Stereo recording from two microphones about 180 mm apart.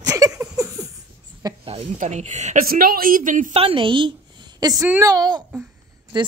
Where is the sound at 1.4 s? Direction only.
30° right (ahead or behind).